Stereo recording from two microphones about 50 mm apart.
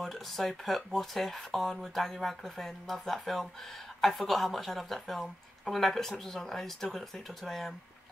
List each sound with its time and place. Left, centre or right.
0.0 s speech: centre